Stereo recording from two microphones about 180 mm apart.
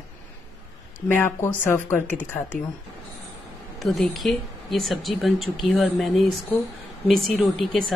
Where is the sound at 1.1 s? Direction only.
10° left (ahead or behind).